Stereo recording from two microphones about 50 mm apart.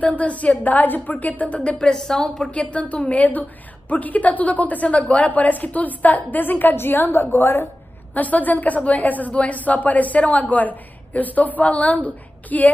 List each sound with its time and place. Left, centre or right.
0.0 s a woman's voice: left; by 2.5 s centre
2.5 s a woman's voice: left
7.1 s a woman's voice: left
8.1 s a woman's voice: left